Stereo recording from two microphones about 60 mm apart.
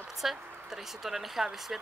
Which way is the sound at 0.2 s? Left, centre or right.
Centre.